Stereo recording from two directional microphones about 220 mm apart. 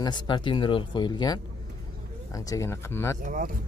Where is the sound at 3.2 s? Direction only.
40° right (ahead or behind).